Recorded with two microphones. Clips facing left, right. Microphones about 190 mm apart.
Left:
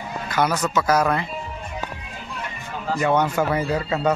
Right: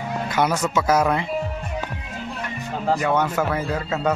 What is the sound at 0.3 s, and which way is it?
Speech, 25° right (ahead or behind).